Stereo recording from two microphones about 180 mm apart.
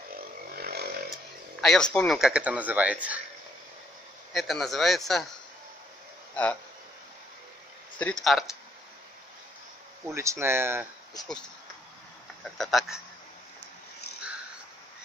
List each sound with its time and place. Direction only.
0.6 s chainsaw: 60° right (ahead or behind)
1.6 s speech: 5° left (ahead or behind)
4.3 s speech: centre (ahead or behind)
6.3 s speech: 10° left (ahead or behind)
8.0 s speech: 5° left (ahead or behind)
10.0 s speech: 15° right (ahead or behind)
12.4 s speech: centre (ahead or behind)